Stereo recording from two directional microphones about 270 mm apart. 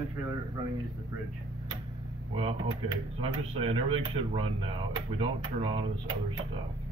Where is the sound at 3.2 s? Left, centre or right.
Right.